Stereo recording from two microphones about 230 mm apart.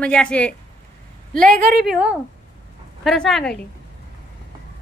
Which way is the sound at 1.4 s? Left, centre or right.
Right.